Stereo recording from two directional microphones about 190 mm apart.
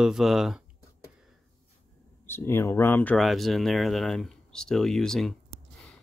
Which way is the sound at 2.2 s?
10° left (ahead or behind).